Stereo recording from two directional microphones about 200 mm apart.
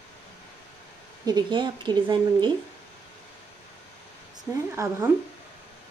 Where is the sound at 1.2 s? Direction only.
20° right (ahead or behind).